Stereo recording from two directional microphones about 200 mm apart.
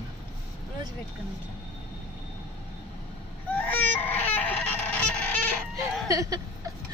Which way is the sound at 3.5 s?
10° left (ahead or behind).